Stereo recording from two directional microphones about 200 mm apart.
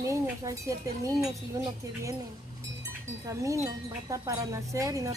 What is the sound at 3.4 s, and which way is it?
Speech, 15° right (ahead or behind).